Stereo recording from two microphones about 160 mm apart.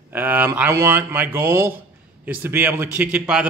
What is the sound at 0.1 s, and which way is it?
A man's voice, 10° right (ahead or behind).